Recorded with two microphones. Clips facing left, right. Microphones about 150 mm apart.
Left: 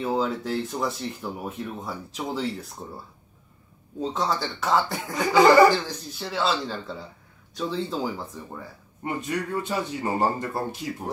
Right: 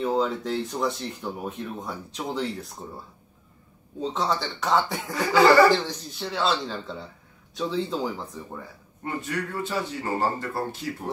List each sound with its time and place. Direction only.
0.0 s speech: 5° left (ahead or behind)
4.0 s speech: centre (ahead or behind)
5.1 s speech: 15° left (ahead or behind)
5.7 s speech: centre (ahead or behind)
9.0 s speech: 15° left (ahead or behind)